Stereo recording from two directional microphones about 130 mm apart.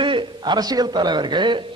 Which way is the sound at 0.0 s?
40° right (ahead or behind).